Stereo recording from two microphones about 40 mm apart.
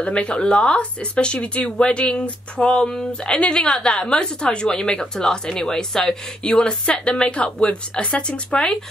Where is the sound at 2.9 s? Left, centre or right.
Centre.